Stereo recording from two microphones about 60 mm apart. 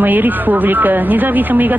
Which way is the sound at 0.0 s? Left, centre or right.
Right.